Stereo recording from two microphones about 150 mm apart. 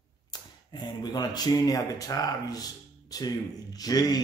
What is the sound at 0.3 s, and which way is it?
Speech, 25° left (ahead or behind).